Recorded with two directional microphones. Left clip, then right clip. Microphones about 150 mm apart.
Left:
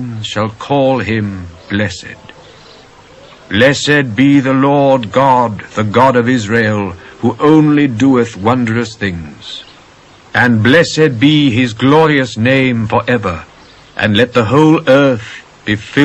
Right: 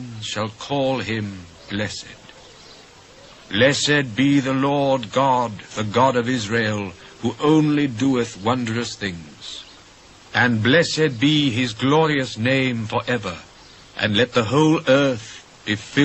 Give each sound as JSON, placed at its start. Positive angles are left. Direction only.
{"t": 0.3, "sound": "a man's voice", "side_deg": -25}
{"t": 1.9, "sound": "speech", "side_deg": -15}
{"t": 3.4, "sound": "a man's voice", "side_deg": -25}
{"t": 4.7, "sound": "a man's voice", "side_deg": -25}
{"t": 6.3, "sound": "speech", "side_deg": -15}
{"t": 6.8, "sound": "a man's voice", "side_deg": -30}
{"t": 10.5, "sound": "a man's voice", "side_deg": -25}
{"t": 10.8, "sound": "speech", "side_deg": -5}
{"t": 11.1, "sound": "a man's voice", "side_deg": -20}
{"t": 11.8, "sound": "speech", "side_deg": -35}
{"t": 12.4, "sound": "a man's voice", "side_deg": -15}